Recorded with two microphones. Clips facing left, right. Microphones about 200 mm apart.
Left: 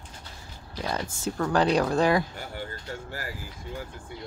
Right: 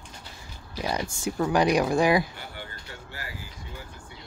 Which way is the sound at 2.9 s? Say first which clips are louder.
Left 7 dB; 45° left (ahead or behind).